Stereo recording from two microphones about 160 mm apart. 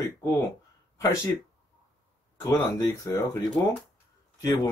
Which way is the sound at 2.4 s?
25° left (ahead or behind).